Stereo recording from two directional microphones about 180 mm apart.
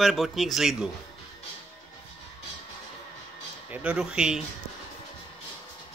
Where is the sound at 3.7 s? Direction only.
5° right (ahead or behind).